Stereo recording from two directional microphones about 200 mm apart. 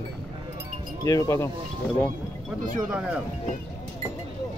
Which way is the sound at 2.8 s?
5° right (ahead or behind).